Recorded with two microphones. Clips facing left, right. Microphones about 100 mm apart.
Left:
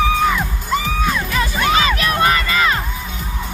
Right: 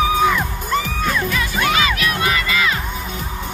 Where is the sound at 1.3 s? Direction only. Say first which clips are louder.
Left 2 dB; 30° left (ahead or behind).